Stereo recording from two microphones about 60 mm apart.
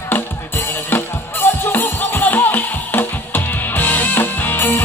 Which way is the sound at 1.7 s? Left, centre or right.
Left.